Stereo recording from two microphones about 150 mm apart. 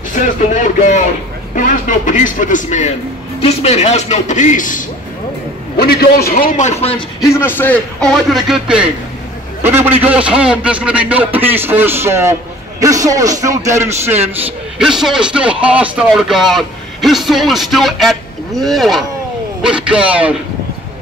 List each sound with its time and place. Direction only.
0.1 s a sound: 55° left (ahead or behind)
1.5 s a man's voice: 60° left (ahead or behind)
5.8 s a man's voice: 90° left; by 7.0 s 45° left (ahead or behind)
7.2 s a man's voice: 20° left (ahead or behind); by 8.8 s 5° right (ahead or behind)
9.6 s a man's voice: 15° right (ahead or behind)